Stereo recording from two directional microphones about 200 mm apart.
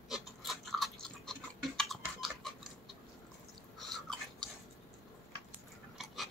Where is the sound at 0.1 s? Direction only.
Centre (ahead or behind).